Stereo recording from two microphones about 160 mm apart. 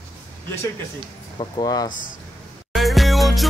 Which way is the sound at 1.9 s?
55° left (ahead or behind).